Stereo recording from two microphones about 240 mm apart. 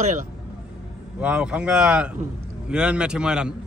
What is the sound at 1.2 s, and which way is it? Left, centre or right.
A man's voice, centre.